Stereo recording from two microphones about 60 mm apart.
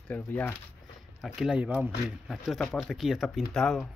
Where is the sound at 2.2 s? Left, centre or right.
Centre.